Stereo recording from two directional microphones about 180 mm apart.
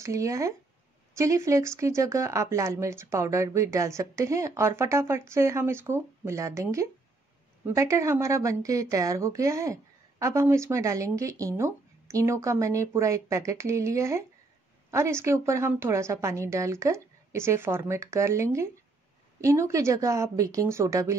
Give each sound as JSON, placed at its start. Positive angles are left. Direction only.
{"t": 0.0, "sound": "a woman's voice", "side_deg": -15}